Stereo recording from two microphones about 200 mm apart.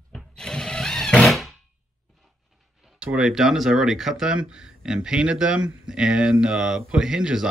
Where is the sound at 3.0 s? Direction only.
5° right (ahead or behind).